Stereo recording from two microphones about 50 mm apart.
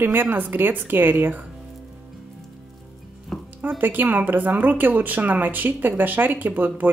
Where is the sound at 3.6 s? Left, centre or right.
Right.